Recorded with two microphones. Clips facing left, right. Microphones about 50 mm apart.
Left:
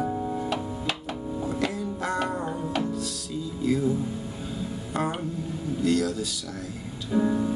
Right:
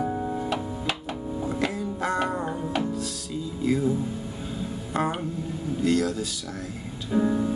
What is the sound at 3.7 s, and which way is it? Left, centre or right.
Music, right.